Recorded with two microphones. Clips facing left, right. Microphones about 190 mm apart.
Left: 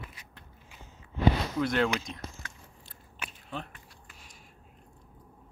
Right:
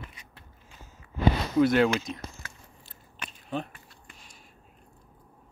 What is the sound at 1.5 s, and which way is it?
Speech, 5° right (ahead or behind).